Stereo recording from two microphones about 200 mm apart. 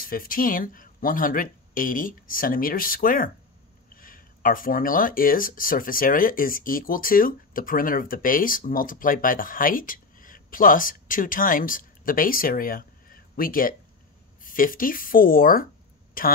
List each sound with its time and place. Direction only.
0.0 s speech: 45° left (ahead or behind)